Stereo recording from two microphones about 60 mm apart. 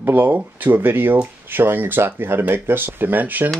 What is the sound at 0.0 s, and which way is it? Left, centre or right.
Speech, right.